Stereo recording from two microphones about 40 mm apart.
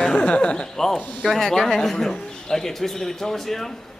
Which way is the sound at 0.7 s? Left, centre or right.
Centre.